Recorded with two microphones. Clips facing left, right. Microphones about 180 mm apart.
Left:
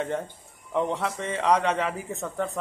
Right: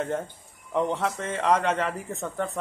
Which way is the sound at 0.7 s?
Centre (ahead or behind).